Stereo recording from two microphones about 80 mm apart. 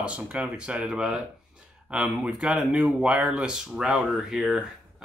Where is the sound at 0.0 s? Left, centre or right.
Centre.